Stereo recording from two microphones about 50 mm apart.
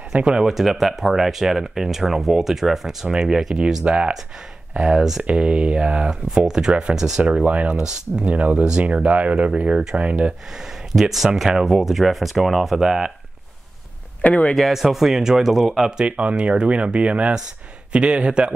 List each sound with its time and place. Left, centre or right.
0.1 s speech: centre
0.5 s speech: centre; by 4.1 s right
4.8 s speech: centre
5.2 s speech: right
7.4 s speech: right
7.7 s speech: centre
8.3 s speech: right
9.6 s speech: centre
10.5 s speech: centre
14.2 s speech: left
14.7 s speech: centre
16.0 s speech: right